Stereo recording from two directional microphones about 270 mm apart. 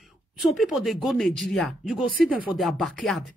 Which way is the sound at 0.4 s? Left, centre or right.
Centre.